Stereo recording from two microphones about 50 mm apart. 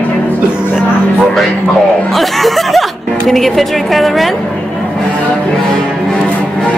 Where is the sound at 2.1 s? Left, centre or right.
Centre.